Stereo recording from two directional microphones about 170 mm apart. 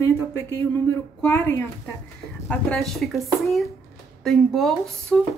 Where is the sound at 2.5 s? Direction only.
5° left (ahead or behind).